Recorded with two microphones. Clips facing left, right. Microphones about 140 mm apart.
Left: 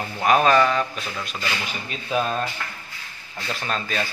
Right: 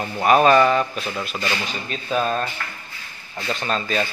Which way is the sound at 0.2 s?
5° right (ahead or behind).